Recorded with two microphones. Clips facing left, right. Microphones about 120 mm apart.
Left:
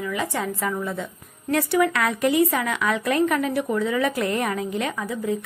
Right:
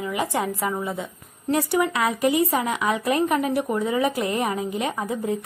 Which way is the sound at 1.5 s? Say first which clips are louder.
Left 1 dB; 20° right (ahead or behind).